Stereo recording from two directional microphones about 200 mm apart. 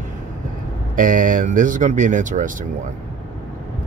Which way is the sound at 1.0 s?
40° right (ahead or behind).